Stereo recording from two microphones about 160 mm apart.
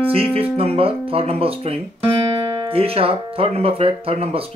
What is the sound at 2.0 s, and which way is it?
Music, 20° right (ahead or behind).